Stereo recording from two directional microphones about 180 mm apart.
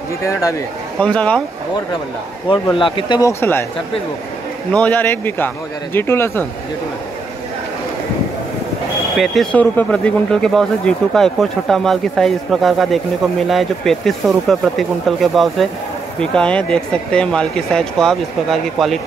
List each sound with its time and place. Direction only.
0.2 s a man's voice: 15° left (ahead or behind)
0.9 s a man's voice: 5° left (ahead or behind)
2.5 s speech: 30° left (ahead or behind)
4.7 s a man's voice: 10° left (ahead or behind)
9.1 s speech: centre (ahead or behind)